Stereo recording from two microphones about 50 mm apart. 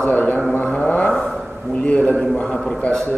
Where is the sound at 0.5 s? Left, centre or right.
Left.